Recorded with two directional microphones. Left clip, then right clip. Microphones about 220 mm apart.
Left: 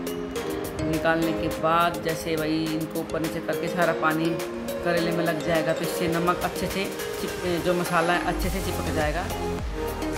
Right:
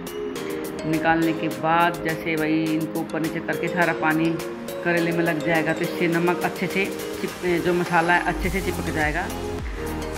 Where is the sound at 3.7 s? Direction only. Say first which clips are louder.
Right 2 dB; 15° left (ahead or behind).